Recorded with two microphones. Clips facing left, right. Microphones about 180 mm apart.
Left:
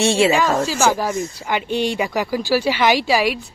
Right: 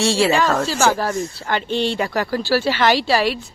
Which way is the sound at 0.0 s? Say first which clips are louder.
Left 1 dB; 20° left (ahead or behind).